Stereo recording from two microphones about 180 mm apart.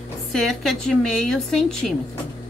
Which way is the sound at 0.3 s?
Centre (ahead or behind).